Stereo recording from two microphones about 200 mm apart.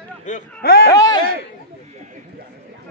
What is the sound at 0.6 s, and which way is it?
Speech, 50° left (ahead or behind).